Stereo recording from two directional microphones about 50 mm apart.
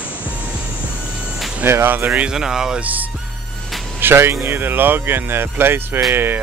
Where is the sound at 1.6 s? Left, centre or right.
Right.